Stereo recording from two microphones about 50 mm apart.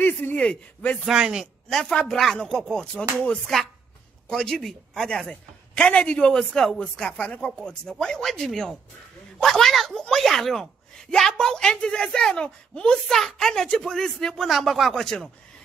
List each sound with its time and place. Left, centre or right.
0.0 s a man's voice: left
1.2 s a man's voice: centre
1.7 s a woman's voice: centre
2.7 s a sound: centre
4.3 s a woman's voice: centre
5.3 s a woman's voice: left
7.2 s a sound: left
8.0 s a woman's voice: centre
13.1 s a woman's voice: centre
14.5 s speech: centre